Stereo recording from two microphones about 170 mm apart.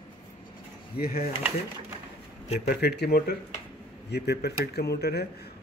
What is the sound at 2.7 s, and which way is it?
Speech, 70° left (ahead or behind).